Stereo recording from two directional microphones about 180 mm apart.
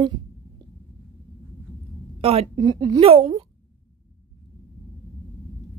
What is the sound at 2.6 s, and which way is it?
Speech, 20° right (ahead or behind).